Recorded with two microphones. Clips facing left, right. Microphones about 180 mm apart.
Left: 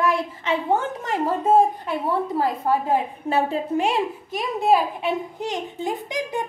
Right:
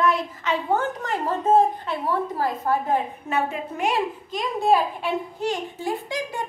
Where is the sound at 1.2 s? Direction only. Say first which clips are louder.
Left 1 dB; 10° left (ahead or behind); by 3.9 s 30° left (ahead or behind).